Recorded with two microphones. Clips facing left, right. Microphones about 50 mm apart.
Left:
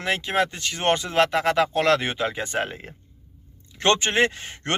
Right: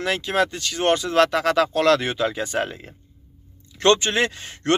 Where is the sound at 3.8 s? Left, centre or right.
Left.